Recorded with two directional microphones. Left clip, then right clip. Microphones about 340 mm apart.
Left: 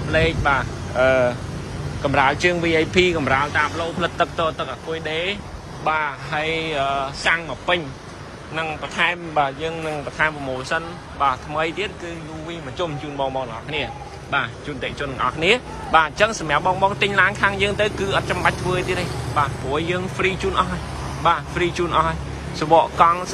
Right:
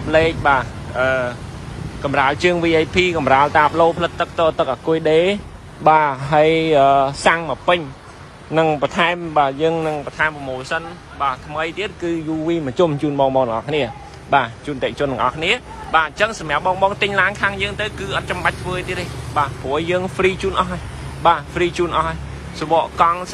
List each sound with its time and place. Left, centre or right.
0.1 s speech: centre
12.0 s speech: centre
13.2 s speech: right
13.5 s speech: centre